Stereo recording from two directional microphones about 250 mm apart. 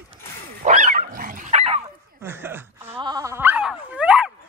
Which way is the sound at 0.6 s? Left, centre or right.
Right.